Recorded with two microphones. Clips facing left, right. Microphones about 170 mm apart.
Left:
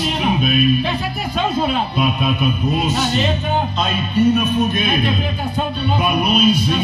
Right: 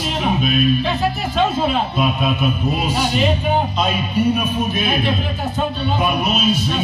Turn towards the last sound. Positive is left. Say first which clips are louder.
# left 3 dB
turn(degrees=-5)  # may be behind; listen again after turning